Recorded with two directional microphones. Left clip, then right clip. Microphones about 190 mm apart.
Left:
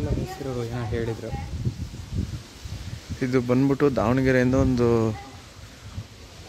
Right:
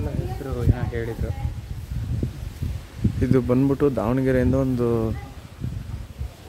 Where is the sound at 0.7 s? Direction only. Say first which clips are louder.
Even; 60° left (ahead or behind).